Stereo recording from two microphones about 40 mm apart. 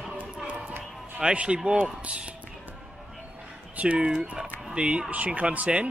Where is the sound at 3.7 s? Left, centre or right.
Right.